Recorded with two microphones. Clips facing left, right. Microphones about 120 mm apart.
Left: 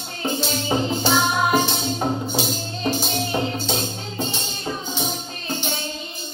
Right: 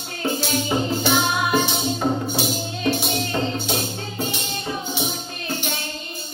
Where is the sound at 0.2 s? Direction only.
15° left (ahead or behind).